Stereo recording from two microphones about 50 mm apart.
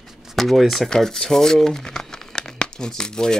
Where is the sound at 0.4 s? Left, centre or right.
Centre.